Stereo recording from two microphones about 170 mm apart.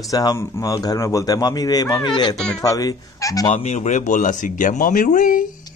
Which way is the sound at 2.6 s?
20° left (ahead or behind).